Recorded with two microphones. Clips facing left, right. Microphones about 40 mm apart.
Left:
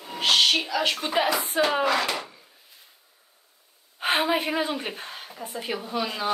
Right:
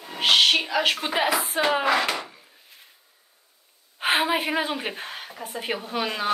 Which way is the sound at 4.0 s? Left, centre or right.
Centre.